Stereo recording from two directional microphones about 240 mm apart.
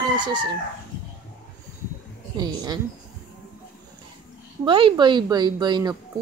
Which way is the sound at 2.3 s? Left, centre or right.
Centre.